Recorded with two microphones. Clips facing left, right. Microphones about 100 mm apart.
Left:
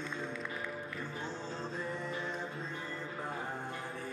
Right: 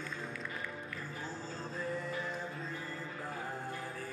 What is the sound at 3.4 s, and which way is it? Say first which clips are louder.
Music: left 1 dB; centre (ahead or behind).